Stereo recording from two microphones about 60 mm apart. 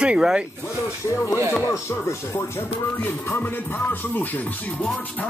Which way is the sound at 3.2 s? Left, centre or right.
Left.